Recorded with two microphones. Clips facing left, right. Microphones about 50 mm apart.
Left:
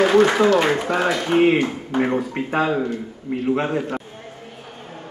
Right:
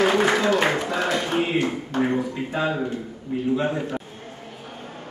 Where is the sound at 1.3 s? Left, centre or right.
Left.